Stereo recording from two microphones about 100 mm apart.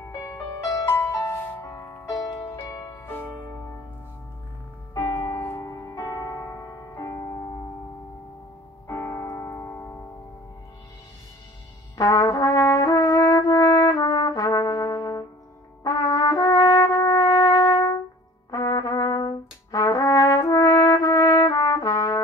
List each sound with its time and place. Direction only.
0.2 s music: 30° left (ahead or behind)
1.7 s music: 40° left (ahead or behind)
3.0 s music: 20° left (ahead or behind)
5.1 s keyboard: 30° left (ahead or behind)
8.8 s piano: 30° left (ahead or behind)
12.0 s brass instrument: 40° left (ahead or behind)
15.8 s music: 40° left (ahead or behind)
18.5 s brass instrument: 40° left (ahead or behind)
20.4 s trumpet: 35° left (ahead or behind)